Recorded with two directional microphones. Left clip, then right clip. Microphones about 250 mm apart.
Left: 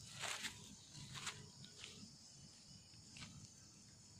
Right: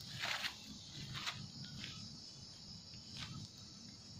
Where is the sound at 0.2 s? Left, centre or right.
Left.